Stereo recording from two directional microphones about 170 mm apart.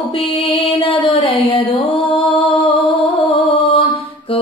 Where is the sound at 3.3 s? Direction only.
30° left (ahead or behind).